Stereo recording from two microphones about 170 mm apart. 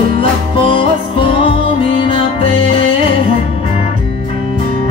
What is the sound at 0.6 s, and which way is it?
Music, 30° left (ahead or behind).